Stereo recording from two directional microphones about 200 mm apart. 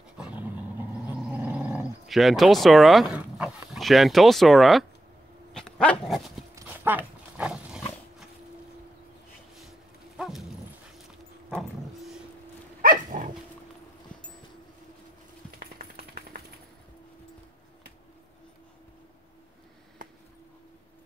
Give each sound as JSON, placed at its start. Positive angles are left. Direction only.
{"t": 0.2, "sound": "dog", "side_deg": -5}
{"t": 1.4, "sound": "speech", "side_deg": -5}
{"t": 5.5, "sound": "dog", "side_deg": 5}
{"t": 6.5, "sound": "dog", "side_deg": -10}
{"t": 10.1, "sound": "dog", "side_deg": 0}
{"t": 12.8, "sound": "dog", "side_deg": -40}
{"t": 15.8, "sound": "a sound", "side_deg": -50}